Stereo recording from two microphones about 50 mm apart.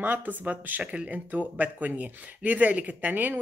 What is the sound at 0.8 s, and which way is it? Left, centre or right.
Speech, right.